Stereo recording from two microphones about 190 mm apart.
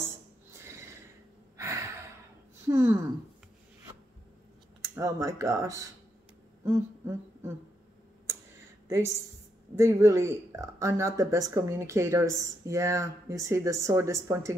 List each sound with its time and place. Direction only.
0.0 s a sound: 15° right (ahead or behind)
1.6 s sigh: 15° right (ahead or behind)
2.7 s speech: 15° right (ahead or behind)
4.8 s speech: 15° right (ahead or behind)
6.6 s a sound: 15° right (ahead or behind)
8.8 s a woman's voice: 15° right (ahead or behind)